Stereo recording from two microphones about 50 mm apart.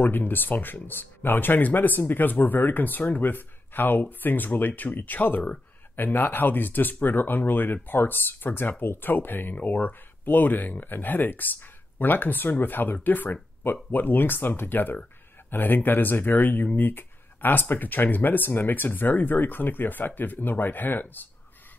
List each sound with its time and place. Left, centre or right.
0.0 s speech: left